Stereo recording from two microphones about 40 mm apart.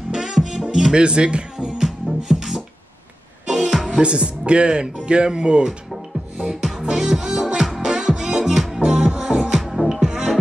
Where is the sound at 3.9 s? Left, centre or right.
Right.